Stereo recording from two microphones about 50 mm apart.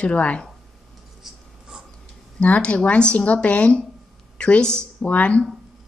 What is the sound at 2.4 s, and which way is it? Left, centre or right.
A woman's voice, left.